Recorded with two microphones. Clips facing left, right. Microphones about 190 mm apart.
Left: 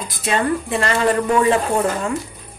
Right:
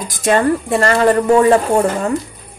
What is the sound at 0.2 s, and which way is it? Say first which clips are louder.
A woman's voice: right 6 dB; 45° right (ahead or behind).